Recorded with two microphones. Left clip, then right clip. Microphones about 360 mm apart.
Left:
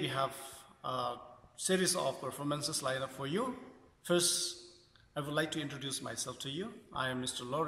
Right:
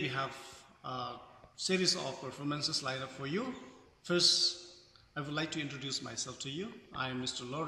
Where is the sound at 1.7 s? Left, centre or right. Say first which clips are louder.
Right 1 dB; centre.